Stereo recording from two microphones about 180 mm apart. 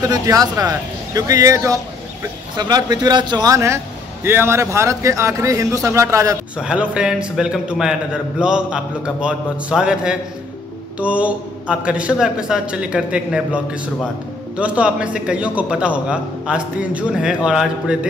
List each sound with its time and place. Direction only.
0.0 s a man's voice: 20° right (ahead or behind)